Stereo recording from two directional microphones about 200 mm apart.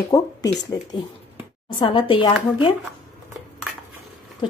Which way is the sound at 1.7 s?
25° left (ahead or behind).